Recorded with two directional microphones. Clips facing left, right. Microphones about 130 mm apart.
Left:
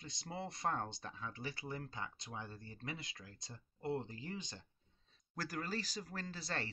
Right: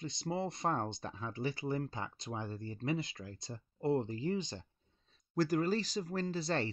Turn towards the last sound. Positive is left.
turn(degrees=-25)  # may be behind; listen again after turning